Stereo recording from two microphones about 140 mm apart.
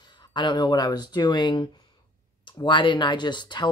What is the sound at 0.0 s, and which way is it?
Speech, 30° left (ahead or behind).